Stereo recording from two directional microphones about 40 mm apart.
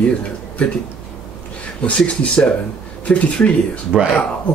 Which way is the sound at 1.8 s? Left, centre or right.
Left.